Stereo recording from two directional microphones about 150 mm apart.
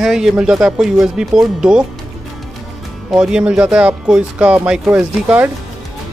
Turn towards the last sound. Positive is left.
turn(degrees=-10)  # may be behind; listen again after turning